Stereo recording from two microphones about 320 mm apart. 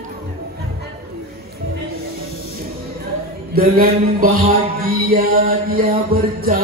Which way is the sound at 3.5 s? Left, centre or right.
Right.